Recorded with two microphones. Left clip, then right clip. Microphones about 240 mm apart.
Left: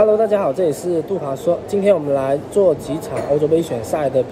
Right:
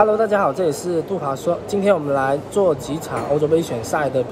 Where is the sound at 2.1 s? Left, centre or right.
Centre.